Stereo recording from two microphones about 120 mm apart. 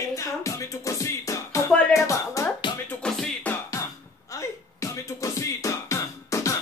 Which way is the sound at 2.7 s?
40° left (ahead or behind).